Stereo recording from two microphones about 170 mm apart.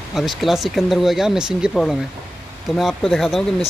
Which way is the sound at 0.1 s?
Centre (ahead or behind).